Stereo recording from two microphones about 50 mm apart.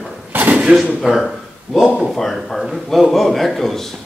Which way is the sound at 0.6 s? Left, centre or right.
Centre.